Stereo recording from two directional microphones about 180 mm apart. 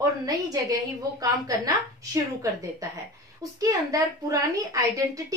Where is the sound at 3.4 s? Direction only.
20° right (ahead or behind).